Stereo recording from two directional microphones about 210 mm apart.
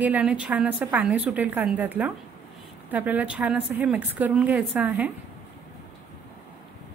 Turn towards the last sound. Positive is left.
turn(degrees=-5)  # may be behind; listen again after turning